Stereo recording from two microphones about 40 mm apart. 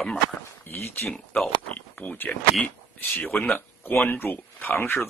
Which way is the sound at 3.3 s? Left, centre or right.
Left.